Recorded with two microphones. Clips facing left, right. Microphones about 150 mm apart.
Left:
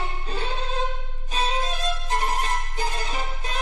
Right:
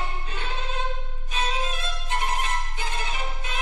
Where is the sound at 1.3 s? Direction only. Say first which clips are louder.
Left 2 dB; 35° left (ahead or behind).